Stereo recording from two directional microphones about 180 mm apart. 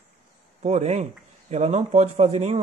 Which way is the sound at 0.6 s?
40° right (ahead or behind).